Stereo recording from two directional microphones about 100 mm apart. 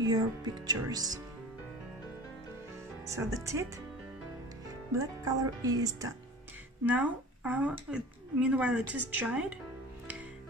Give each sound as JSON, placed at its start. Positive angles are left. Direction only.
{"t": 0.0, "sound": "speech", "side_deg": -40}
{"t": 3.1, "sound": "speech", "side_deg": -30}
{"t": 4.9, "sound": "speech", "side_deg": -35}
{"t": 6.9, "sound": "speech", "side_deg": -15}